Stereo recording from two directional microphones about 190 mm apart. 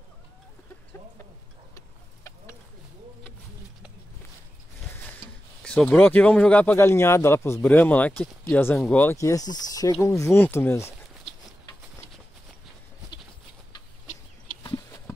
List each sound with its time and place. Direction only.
5.6 s speech: 5° left (ahead or behind)
14.6 s chicken: 25° left (ahead or behind)